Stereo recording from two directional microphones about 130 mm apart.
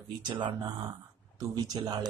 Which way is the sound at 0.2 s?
35° right (ahead or behind).